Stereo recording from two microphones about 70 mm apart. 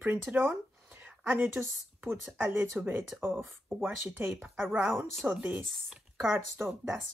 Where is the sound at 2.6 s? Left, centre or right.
Right.